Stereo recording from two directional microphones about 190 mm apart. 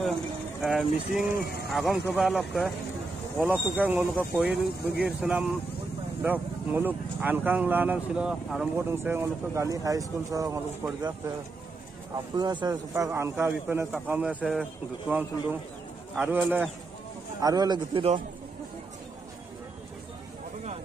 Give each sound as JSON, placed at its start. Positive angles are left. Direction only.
{"t": 0.6, "sound": "speech", "side_deg": 0}
{"t": 1.3, "sound": "speech", "side_deg": 55}
{"t": 1.7, "sound": "speech", "side_deg": 0}
{"t": 3.7, "sound": "speech", "side_deg": -10}
{"t": 12.4, "sound": "speech", "side_deg": -20}
{"t": 17.4, "sound": "speech", "side_deg": -20}